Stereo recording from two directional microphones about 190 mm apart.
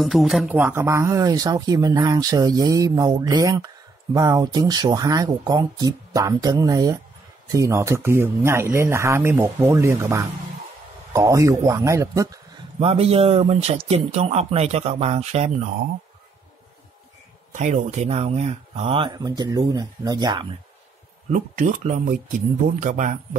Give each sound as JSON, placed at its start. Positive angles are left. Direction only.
{"t": 0.0, "sound": "speech", "side_deg": 0}
{"t": 12.8, "sound": "speech", "side_deg": -30}
{"t": 17.5, "sound": "speech", "side_deg": -40}
{"t": 21.3, "sound": "speech", "side_deg": -40}